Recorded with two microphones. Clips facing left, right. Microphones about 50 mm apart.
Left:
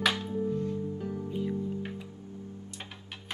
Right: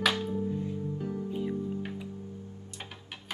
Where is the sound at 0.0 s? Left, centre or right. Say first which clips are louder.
Even; centre.